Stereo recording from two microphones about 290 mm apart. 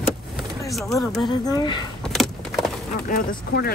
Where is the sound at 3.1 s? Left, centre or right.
Left.